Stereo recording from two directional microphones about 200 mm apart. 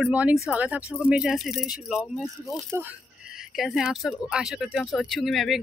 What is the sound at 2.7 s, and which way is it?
Speech, 10° right (ahead or behind).